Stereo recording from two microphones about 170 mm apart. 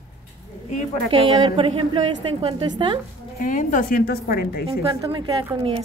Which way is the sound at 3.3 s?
50° left (ahead or behind).